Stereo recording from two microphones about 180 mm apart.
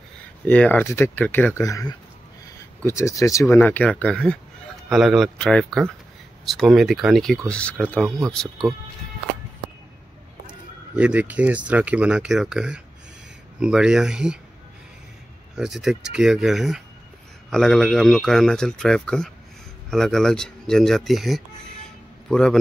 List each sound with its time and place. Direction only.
0.5 s a man's voice: 10° left (ahead or behind)
11.0 s a man's voice: 10° right (ahead or behind)
15.5 s a man's voice: centre (ahead or behind)